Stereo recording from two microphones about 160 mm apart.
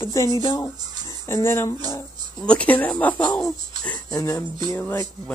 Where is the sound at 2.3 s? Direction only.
5° left (ahead or behind).